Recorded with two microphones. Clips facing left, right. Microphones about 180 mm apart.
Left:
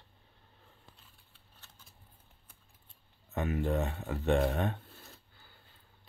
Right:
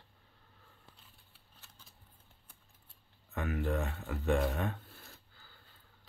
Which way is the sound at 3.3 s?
25° left (ahead or behind).